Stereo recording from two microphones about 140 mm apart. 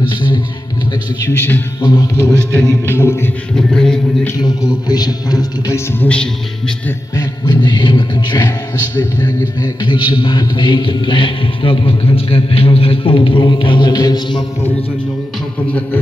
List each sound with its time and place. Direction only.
1.8 s a man's voice: 30° left (ahead or behind)
3.5 s music: 5° left (ahead or behind)
4.4 s a man's voice: 30° left (ahead or behind)
5.9 s a man's voice: 10° left (ahead or behind)
7.2 s mantra: 30° left (ahead or behind)